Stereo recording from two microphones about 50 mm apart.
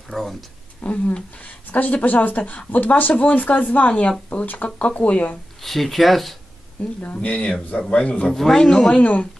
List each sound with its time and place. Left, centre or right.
0.1 s speech: centre
0.7 s a woman's voice: left
5.6 s speech: centre
6.8 s speech: left
7.5 s speech: centre
7.9 s speech: centre
8.3 s speech: centre
8.8 s speech: left